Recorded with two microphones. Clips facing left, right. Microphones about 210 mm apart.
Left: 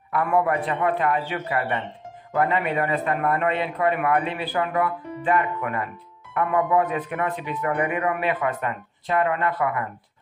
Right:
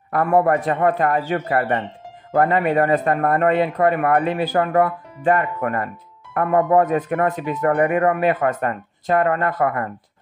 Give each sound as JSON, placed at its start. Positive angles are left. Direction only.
{"t": 0.1, "sound": "speech", "side_deg": -40}